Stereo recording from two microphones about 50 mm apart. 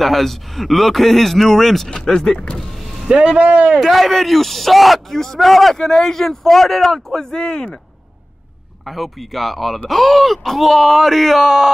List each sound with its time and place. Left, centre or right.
0.0 s a man's voice: centre
3.1 s speech: centre
3.4 s speech: right
3.8 s a man's voice: centre
8.8 s a man's voice: centre